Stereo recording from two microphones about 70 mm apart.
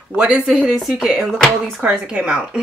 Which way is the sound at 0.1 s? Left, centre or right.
Centre.